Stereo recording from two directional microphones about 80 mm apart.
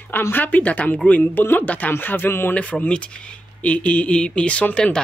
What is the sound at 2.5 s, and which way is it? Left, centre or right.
Speech, centre.